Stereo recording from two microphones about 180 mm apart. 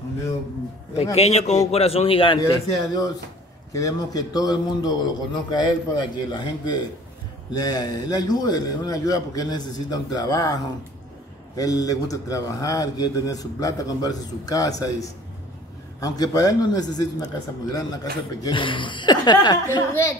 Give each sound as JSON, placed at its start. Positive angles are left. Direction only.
{"t": 1.1, "sound": "a man's voice", "side_deg": 35}
{"t": 18.4, "sound": "a man's voice", "side_deg": 25}